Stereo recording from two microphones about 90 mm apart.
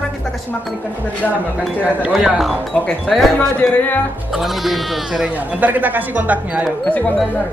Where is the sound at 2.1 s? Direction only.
5° right (ahead or behind).